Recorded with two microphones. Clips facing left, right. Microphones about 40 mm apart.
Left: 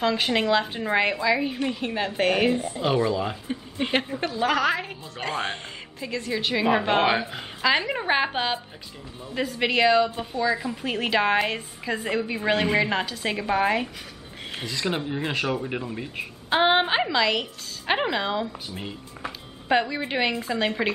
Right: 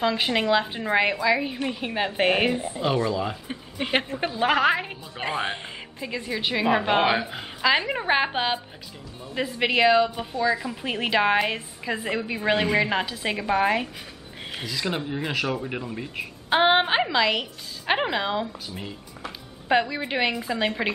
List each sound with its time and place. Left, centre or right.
0.0 s a woman's voice: centre
2.8 s speech: centre
3.8 s a woman's voice: centre
4.2 s a woman's voice: right; by 16.3 s centre
16.4 s speech: centre